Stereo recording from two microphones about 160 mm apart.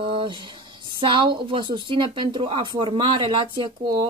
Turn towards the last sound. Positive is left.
turn(degrees=-30)  # may be behind; listen again after turning